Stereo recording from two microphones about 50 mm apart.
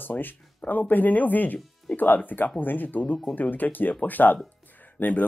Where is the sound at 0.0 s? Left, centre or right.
Left.